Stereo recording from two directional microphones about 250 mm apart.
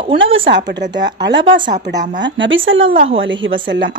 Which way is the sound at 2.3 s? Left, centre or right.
Right.